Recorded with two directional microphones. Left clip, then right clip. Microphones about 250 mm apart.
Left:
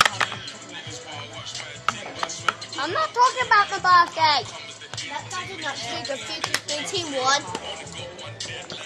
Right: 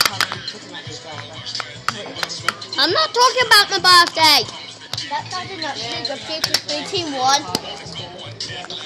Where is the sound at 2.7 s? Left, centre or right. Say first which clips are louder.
Right 9 dB; right.